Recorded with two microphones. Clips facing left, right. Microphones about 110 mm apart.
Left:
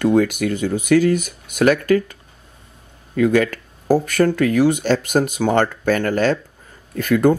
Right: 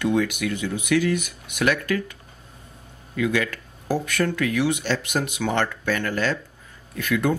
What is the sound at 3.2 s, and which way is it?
Speech, 45° left (ahead or behind).